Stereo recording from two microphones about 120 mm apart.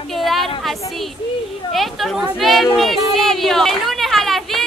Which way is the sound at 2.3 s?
Centre (ahead or behind).